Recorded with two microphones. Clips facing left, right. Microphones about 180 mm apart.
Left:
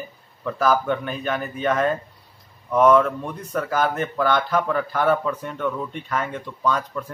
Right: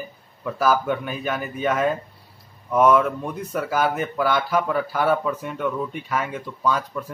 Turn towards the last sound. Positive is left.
turn(degrees=-5)  # may be behind; listen again after turning